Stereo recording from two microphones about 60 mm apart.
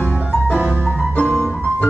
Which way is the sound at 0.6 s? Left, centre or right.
Right.